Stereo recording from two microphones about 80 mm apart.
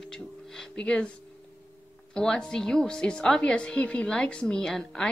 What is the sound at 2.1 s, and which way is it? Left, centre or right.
A woman's voice, centre.